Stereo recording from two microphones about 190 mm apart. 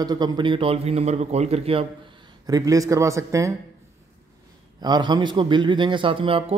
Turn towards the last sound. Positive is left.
turn(degrees=-30)  # may be behind; listen again after turning